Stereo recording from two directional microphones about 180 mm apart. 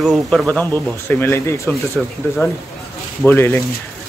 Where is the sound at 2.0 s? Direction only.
Centre (ahead or behind).